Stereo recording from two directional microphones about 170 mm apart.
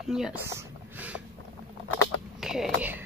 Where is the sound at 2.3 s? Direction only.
Centre (ahead or behind).